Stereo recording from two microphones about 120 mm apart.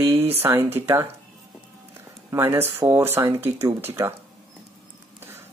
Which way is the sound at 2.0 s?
20° right (ahead or behind).